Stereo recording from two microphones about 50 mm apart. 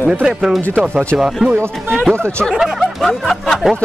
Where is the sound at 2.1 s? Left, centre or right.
Right.